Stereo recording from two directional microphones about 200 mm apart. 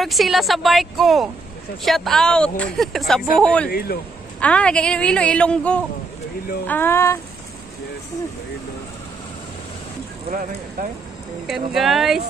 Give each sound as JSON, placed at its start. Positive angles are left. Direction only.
{"t": 0.0, "sound": "speech", "side_deg": 0}
{"t": 3.7, "sound": "speech", "side_deg": 50}
{"t": 4.4, "sound": "speech", "side_deg": 5}
{"t": 10.8, "sound": "speech", "side_deg": -45}
{"t": 11.4, "sound": "speech", "side_deg": 0}